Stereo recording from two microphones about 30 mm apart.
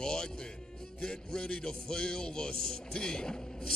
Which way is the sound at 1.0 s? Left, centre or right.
Left.